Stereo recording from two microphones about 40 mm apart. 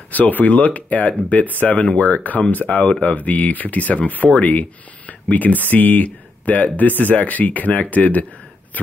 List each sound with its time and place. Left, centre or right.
0.1 s speech: left
2.9 s speech: left
3.2 s speech: left